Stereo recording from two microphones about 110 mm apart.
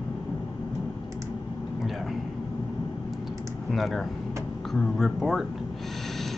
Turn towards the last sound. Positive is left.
turn(degrees=0)  # may be behind; listen again after turning